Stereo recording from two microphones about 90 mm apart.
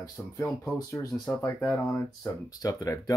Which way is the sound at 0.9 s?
35° left (ahead or behind).